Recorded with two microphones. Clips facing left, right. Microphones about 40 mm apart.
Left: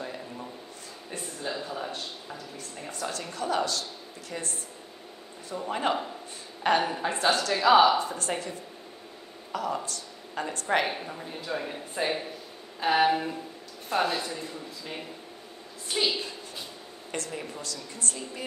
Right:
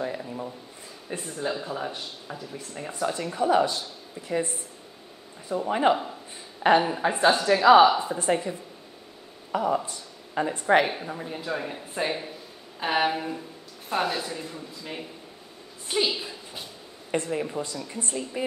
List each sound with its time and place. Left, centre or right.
0.0 s a sound: centre
1.4 s a woman's voice: centre
5.6 s a woman's voice: centre
15.9 s a woman's voice: centre